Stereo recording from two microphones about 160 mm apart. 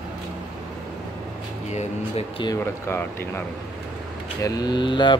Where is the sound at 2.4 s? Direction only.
20° left (ahead or behind).